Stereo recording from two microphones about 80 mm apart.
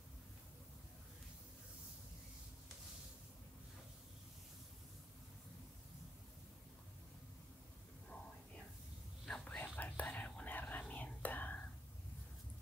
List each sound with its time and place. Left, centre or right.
9.4 s whispering: centre